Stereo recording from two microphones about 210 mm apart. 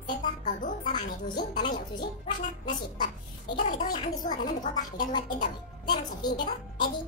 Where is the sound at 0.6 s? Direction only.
40° left (ahead or behind).